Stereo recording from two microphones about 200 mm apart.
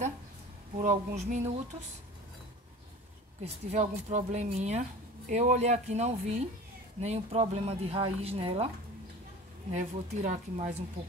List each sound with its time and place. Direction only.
0.7 s speech: 35° right (ahead or behind)
3.4 s speech: 35° right (ahead or behind)
9.7 s speech: 35° right (ahead or behind)